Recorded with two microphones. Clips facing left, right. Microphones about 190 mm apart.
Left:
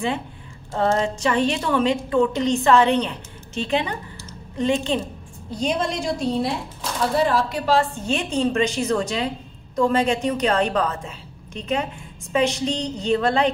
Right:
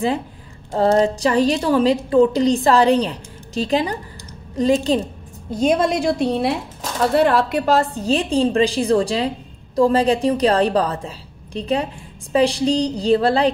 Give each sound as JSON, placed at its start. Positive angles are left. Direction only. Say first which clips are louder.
{"t": 0.7, "sound": "a woman's voice", "louder": "right 5 dB", "side_deg": -35}
{"t": 5.5, "sound": "a woman's voice", "louder": "right 6 dB", "side_deg": -50}